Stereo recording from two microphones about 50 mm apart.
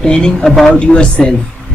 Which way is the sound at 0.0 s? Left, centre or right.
Centre.